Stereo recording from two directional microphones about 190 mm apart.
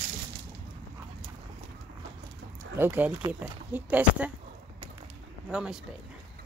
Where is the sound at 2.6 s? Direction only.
10° right (ahead or behind).